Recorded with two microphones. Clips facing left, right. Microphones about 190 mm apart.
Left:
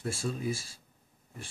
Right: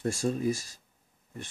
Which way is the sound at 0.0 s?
45° right (ahead or behind).